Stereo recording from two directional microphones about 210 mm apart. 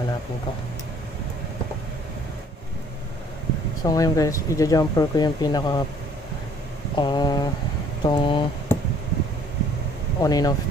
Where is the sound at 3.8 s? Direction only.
15° left (ahead or behind).